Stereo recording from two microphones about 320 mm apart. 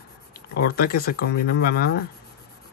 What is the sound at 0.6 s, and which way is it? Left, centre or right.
Speech, left.